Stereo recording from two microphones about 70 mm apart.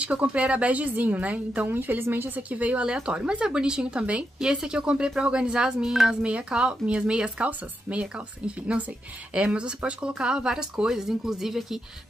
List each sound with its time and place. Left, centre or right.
0.0 s a woman's voice: centre